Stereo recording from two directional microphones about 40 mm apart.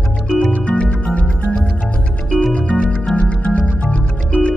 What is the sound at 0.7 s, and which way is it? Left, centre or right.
Music, left.